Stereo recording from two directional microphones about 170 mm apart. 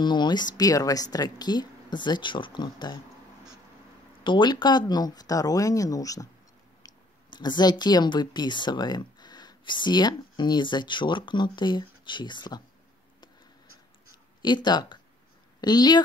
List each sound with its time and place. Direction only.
0.0 s speech: 25° left (ahead or behind)
4.2 s speech: 25° left (ahead or behind)
14.4 s speech: 25° left (ahead or behind)